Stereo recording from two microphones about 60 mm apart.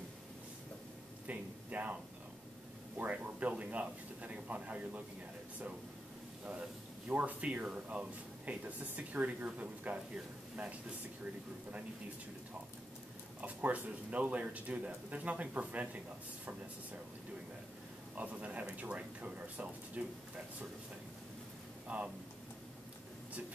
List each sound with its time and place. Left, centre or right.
1.2 s speech: right
3.0 s speech: right
7.1 s speech: right
13.4 s speech: right
18.1 s speech: right
21.8 s speech: right